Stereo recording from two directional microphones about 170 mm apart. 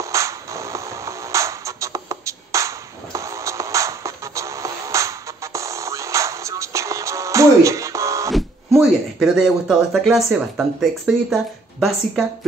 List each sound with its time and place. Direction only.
0.0 s music: 20° right (ahead or behind)
8.3 s speech: centre (ahead or behind)